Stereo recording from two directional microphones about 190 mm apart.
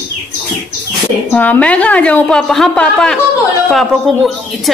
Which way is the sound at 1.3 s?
10° left (ahead or behind).